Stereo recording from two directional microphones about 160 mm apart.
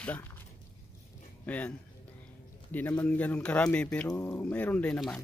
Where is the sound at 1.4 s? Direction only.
10° left (ahead or behind).